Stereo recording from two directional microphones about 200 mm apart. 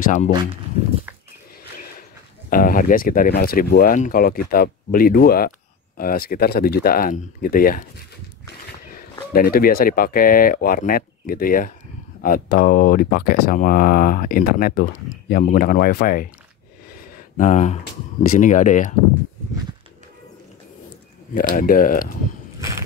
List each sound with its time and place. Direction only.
0.0 s speech: 40° left (ahead or behind)
2.5 s speech: 45° left (ahead or behind)
9.3 s speech: 45° left (ahead or behind)
16.9 s a sound: 40° left (ahead or behind)
18.3 s speech: 40° left (ahead or behind)
21.4 s speech: 45° left (ahead or behind)